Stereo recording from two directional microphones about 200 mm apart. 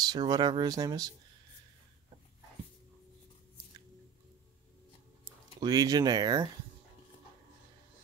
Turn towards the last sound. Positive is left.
turn(degrees=-20)  # may be behind; listen again after turning